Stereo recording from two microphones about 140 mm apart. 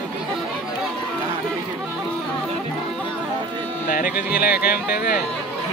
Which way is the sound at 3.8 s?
90° left.